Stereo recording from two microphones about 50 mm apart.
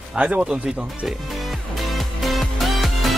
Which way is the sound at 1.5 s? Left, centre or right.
Centre.